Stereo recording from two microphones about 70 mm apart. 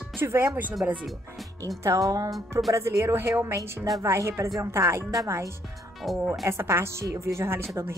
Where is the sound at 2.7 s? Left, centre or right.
Right.